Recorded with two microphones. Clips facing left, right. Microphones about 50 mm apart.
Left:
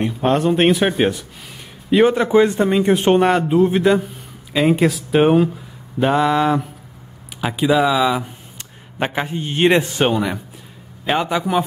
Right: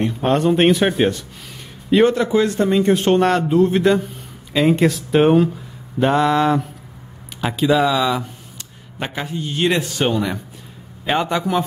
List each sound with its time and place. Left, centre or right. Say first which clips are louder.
0.0 s speech: even; centre
2.1 s a man's voice: left 3 dB; left; by 5.5 s centre
5.9 s a sound: even; centre
7.3 s a man's voice: even; centre
9.0 s a man's voice: left 4 dB; left
11.1 s a sound: even; centre